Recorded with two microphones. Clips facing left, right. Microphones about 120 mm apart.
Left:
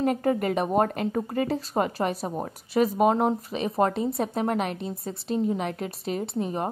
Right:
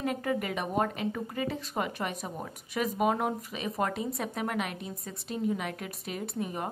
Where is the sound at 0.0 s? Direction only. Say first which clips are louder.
Left 7 dB; 40° left (ahead or behind).